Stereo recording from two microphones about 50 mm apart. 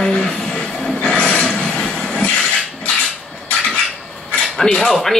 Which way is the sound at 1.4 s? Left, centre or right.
Left.